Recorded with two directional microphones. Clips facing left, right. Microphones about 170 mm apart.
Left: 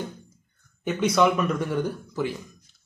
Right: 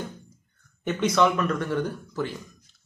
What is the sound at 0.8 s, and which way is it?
Speech, 5° left (ahead or behind).